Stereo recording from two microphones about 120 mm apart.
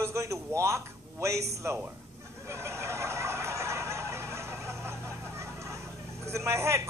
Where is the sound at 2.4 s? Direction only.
25° right (ahead or behind).